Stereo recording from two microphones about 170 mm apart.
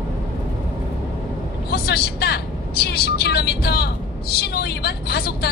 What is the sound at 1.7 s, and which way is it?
Speech, 70° left (ahead or behind).